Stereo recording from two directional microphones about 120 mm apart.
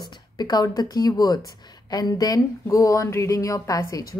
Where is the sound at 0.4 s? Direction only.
35° left (ahead or behind).